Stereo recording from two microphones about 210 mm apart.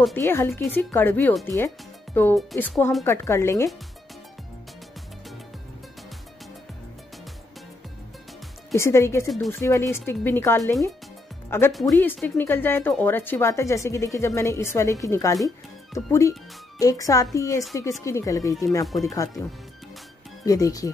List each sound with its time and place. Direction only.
0.0 s speech: 10° left (ahead or behind)
3.0 s speech: 15° left (ahead or behind)
8.7 s speech: 10° left (ahead or behind)
20.4 s speech: 15° left (ahead or behind)